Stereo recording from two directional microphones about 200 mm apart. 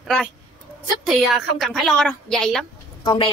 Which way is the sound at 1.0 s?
Centre (ahead or behind).